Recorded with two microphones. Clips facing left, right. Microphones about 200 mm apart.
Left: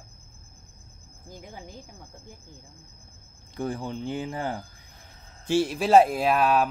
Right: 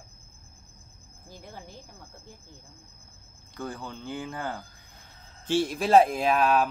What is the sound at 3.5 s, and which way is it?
Speech, 20° left (ahead or behind).